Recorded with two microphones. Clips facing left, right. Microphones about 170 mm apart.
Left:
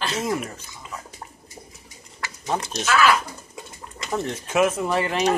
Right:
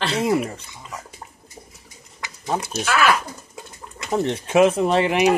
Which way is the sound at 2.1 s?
10° right (ahead or behind).